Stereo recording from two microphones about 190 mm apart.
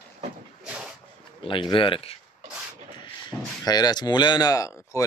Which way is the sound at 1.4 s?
25° left (ahead or behind).